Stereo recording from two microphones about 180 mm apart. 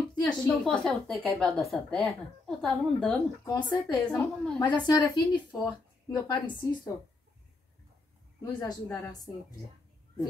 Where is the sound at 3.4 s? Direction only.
20° left (ahead or behind).